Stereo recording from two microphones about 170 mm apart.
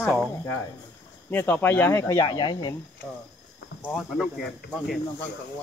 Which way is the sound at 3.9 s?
Centre (ahead or behind).